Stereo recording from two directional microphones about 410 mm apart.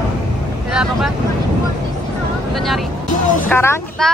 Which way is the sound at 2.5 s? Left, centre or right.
Centre.